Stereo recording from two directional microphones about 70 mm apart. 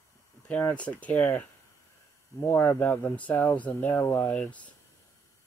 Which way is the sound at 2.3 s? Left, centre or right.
Left.